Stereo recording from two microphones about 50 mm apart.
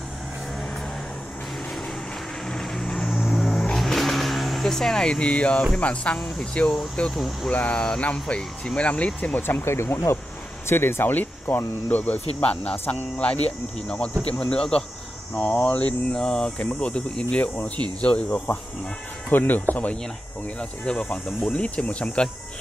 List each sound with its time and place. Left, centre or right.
2.4 s vehicle: centre; by 5.6 s left
5.8 s speech: left
6.1 s speech: centre
6.5 s speech: left
7.1 s speech: centre
7.5 s speech: left
9.6 s speech: left
10.7 s speech: left
11.1 s speech: left
13.8 s speech: left
15.3 s speech: left
16.2 s speech: centre; by 20.0 s left
20.8 s speech: centre